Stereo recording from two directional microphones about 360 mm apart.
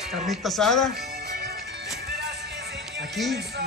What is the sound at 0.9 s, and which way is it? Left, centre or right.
Music, right.